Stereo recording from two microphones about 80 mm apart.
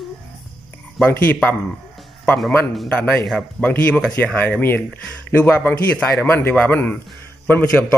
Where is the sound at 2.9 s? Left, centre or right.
Centre.